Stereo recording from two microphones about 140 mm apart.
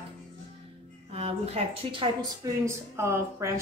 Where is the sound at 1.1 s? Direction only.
45° right (ahead or behind).